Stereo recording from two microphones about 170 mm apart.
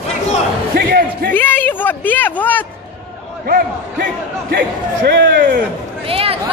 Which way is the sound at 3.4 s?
60° right (ahead or behind).